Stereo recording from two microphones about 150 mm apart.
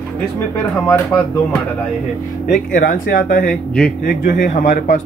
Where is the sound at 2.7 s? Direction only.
75° left (ahead or behind); by 5.0 s 55° left (ahead or behind).